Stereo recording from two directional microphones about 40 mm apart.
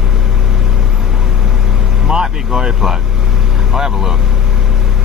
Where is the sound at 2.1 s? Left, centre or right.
Centre.